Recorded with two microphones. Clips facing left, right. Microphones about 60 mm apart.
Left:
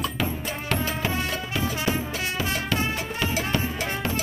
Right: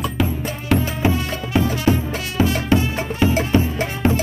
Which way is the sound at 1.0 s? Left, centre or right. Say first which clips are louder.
Right 10 dB; right.